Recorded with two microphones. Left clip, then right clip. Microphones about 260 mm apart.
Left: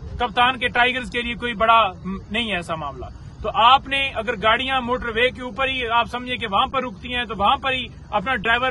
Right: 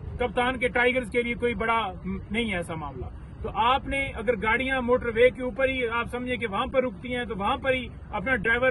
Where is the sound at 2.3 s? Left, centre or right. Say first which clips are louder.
Left 6 dB; centre.